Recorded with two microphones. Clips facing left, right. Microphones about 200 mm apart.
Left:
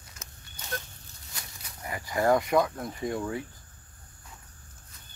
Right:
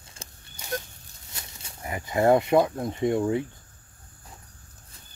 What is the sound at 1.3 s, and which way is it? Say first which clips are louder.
Speech: right 2 dB; 25° right (ahead or behind).